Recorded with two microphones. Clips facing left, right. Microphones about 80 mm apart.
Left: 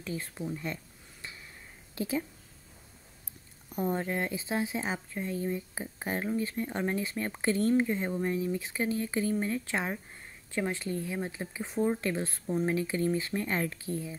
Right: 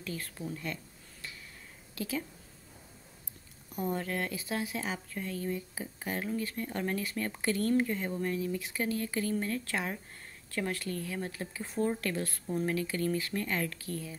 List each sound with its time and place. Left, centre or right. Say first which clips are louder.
0.0 s speech: left 3 dB; left
2.0 s speech: left 4 dB; left
3.7 s speech: left 3 dB; left